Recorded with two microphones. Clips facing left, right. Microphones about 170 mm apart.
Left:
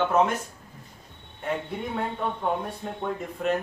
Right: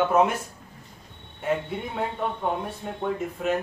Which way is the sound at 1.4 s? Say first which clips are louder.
Right 3 dB; 5° right (ahead or behind).